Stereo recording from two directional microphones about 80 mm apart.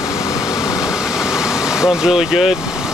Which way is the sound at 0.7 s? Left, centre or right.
Centre.